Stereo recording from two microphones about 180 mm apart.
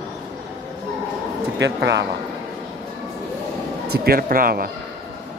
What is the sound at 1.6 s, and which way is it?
Speech, 75° right (ahead or behind).